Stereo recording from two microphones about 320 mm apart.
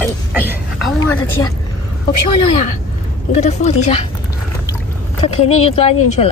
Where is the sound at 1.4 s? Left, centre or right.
Centre.